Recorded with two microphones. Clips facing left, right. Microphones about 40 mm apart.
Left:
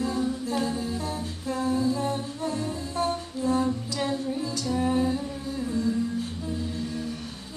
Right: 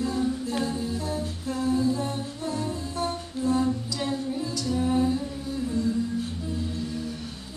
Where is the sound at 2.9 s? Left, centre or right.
Left.